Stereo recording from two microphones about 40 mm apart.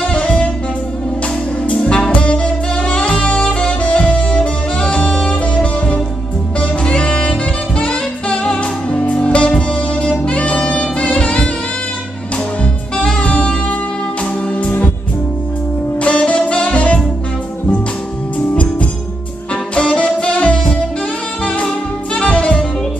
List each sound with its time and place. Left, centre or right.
0.1 s music: left
1.7 s saxophone: left
7.8 s music: left
12.9 s saxophone: left
16.0 s saxophone: left
19.7 s saxophone: left
22.2 s saxophone: left